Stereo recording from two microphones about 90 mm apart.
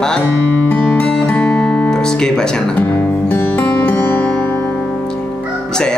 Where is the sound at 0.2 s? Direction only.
20° left (ahead or behind).